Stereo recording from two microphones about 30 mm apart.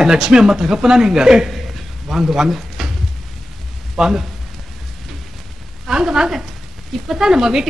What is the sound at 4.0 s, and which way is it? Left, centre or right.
Speech, centre.